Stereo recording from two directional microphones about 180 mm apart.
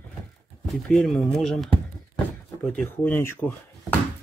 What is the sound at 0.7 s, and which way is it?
Speech, centre (ahead or behind).